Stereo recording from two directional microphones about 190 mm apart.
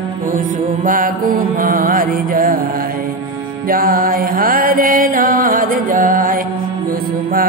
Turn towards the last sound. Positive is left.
turn(degrees=-45)  # may be behind; listen again after turning